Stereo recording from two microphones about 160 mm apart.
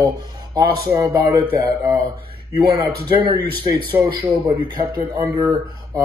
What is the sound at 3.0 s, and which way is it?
Speech, 30° right (ahead or behind).